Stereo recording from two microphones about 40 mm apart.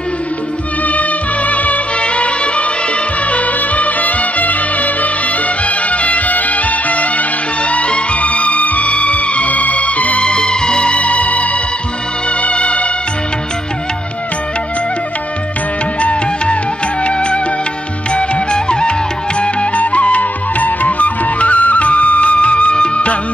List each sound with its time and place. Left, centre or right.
0.8 s music: left
10.2 s music: left
16.0 s music: left